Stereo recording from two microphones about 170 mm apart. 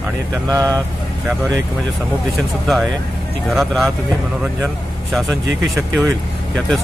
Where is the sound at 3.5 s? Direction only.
Centre (ahead or behind).